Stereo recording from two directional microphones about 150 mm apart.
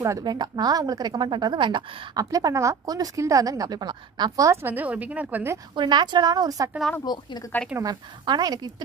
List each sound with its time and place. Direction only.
0.0 s a woman's voice: 25° right (ahead or behind)
5.8 s a woman's voice: 30° right (ahead or behind)
7.1 s speech: 30° left (ahead or behind)
7.8 s a woman's voice: 25° right (ahead or behind)